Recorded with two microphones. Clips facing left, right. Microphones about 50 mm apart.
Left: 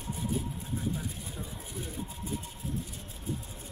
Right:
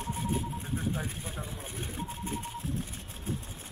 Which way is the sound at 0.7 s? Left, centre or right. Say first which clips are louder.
Even; right.